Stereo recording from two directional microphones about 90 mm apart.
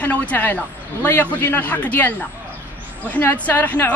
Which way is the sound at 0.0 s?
15° left (ahead or behind).